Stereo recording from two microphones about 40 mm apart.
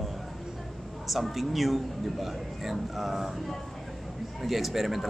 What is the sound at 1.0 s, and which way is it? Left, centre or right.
A woman's voice, centre.